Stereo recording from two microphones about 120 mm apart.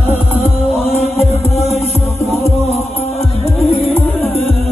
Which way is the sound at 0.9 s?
60° left (ahead or behind).